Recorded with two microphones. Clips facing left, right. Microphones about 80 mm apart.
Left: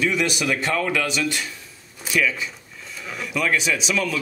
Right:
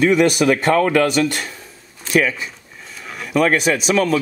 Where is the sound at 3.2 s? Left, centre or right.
Right.